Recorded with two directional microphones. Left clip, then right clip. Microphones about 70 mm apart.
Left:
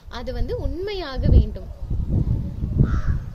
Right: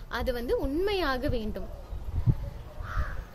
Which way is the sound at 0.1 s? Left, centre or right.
Right.